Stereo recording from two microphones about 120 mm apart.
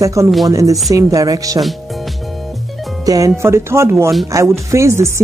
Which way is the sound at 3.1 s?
25° right (ahead or behind).